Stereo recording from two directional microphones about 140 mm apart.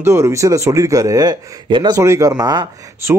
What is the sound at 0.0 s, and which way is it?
Speech, 20° right (ahead or behind).